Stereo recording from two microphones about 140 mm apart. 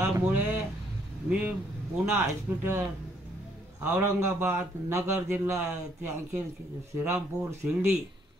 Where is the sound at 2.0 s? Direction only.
15° right (ahead or behind).